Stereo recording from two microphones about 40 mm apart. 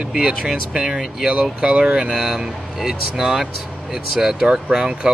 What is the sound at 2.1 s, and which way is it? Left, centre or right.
Speech, centre.